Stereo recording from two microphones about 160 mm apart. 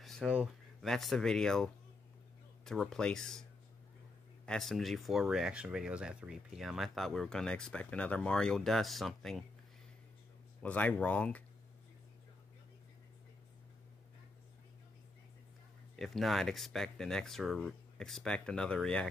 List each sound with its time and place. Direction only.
0.0 s a sound: centre (ahead or behind)
0.9 s speech: 5° left (ahead or behind)
4.5 s speech: centre (ahead or behind)
10.6 s speech: 10° left (ahead or behind)
16.0 s speech: centre (ahead or behind)